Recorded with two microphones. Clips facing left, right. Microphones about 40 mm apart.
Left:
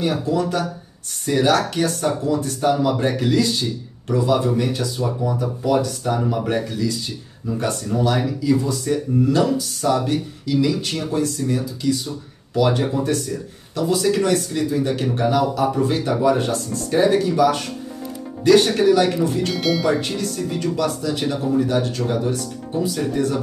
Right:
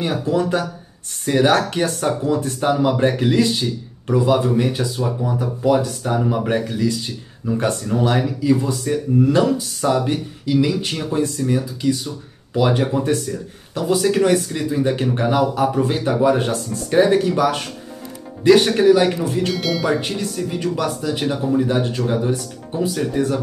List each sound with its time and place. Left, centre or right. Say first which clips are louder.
0.0 s speech: right 1 dB; right
12.5 s speech: right 1 dB; right
19.5 s speech: left 1 dB; centre
20.0 s speech: even; right